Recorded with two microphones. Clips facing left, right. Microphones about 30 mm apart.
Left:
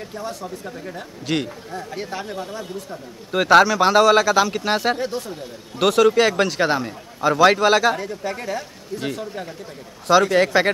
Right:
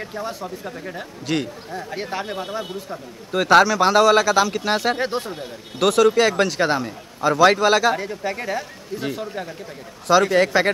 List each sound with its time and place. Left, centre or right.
0.0 s speech: centre
1.2 s a man's voice: centre
1.7 s speech: centre
2.2 s speech: right
3.3 s a man's voice: centre
4.9 s speech: right
5.8 s a man's voice: centre
7.9 s speech: centre
10.3 s a man's voice: centre